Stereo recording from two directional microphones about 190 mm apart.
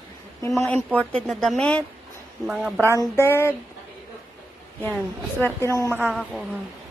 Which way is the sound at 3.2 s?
15° left (ahead or behind).